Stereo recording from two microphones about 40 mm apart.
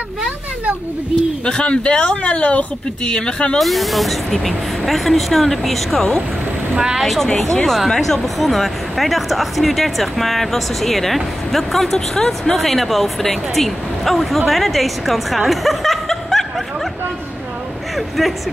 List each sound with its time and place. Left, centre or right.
1.4 s speech: left
3.5 s speech: centre
6.7 s speech: centre
7.0 s speech: centre
7.2 s speech: centre
8.4 s speech: centre
17.9 s speech: centre